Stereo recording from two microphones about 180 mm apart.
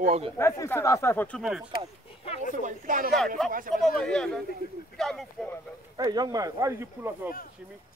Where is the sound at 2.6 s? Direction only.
45° right (ahead or behind).